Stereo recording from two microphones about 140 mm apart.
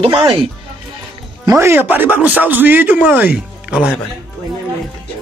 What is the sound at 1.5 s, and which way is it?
Speech, 20° right (ahead or behind).